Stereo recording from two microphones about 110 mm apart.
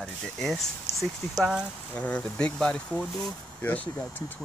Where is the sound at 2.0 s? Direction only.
10° left (ahead or behind).